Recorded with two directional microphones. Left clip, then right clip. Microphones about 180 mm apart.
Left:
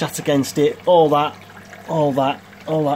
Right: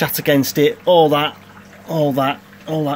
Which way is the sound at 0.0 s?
5° right (ahead or behind).